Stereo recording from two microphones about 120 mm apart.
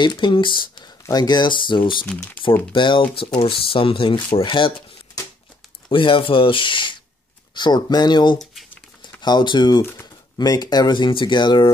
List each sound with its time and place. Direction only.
0.0 s speech: 40° left (ahead or behind)
5.9 s speech: 45° left (ahead or behind)